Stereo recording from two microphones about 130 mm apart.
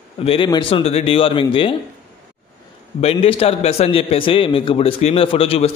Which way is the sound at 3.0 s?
50° left (ahead or behind).